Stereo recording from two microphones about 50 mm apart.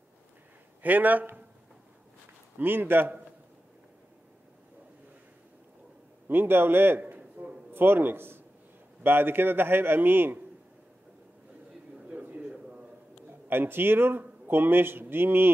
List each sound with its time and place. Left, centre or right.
0.8 s a man's voice: right
2.6 s a man's voice: right
6.2 s a man's voice: right
7.0 s a sound: right
7.7 s a man's voice: right
12.1 s a sound: right
13.3 s a man's voice: right